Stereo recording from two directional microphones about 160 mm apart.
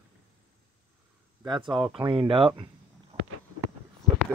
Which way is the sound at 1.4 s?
30° right (ahead or behind).